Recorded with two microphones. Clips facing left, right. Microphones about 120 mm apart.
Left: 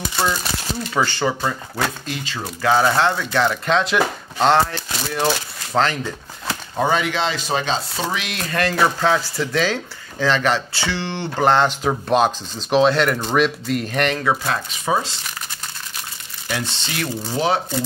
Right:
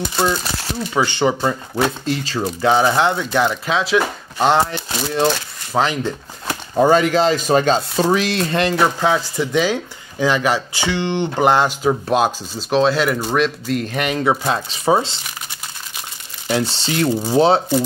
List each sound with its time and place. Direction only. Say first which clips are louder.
0.9 s speech: right 3 dB; 20° right (ahead or behind)
2.0 s speech: right 7 dB; 35° right (ahead or behind)
2.4 s speech: right 2 dB; 20° right (ahead or behind); by 4.5 s 5° right (ahead or behind)
4.5 s speech: even; 15° right (ahead or behind)
5.2 s shuffling cards: right 2 dB; centre (ahead or behind)
5.8 s speech: right 1 dB; 15° right (ahead or behind)
6.8 s speech: right 7 dB; 40° right (ahead or behind); by 14.1 s centre (ahead or behind)
14.1 s speech: right 3 dB; 20° right (ahead or behind)
16.4 s speech: right 7 dB; 30° right (ahead or behind)